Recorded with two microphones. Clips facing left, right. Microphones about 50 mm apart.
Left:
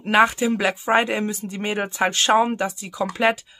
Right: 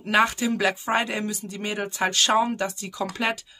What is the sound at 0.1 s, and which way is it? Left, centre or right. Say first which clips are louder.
Speech: left 4 dB; centre.